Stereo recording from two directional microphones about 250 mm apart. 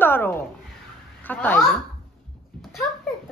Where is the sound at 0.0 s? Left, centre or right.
Centre.